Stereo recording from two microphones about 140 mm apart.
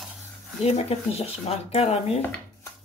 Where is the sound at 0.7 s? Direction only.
50° left (ahead or behind).